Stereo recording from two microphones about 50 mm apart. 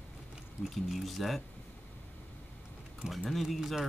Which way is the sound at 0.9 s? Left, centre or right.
Centre.